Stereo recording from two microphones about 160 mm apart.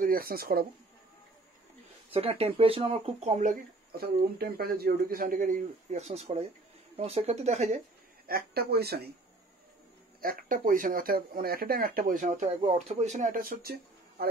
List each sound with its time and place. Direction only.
0.0 s speech: 65° right (ahead or behind)
2.1 s speech: 35° right (ahead or behind)
3.3 s speech: 55° right (ahead or behind)
8.3 s speech: 75° right (ahead or behind)
10.2 s speech: 60° right (ahead or behind)
12.4 s speech: 40° right (ahead or behind); by 14.2 s 70° right (ahead or behind)